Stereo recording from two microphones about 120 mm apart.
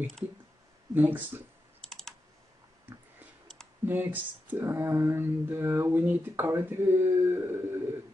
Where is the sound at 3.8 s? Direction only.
15° right (ahead or behind).